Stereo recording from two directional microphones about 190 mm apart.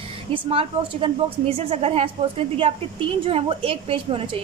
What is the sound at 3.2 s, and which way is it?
A woman's voice, 30° right (ahead or behind).